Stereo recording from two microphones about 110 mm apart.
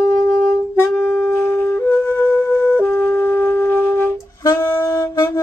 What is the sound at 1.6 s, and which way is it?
Flute, 20° left (ahead or behind).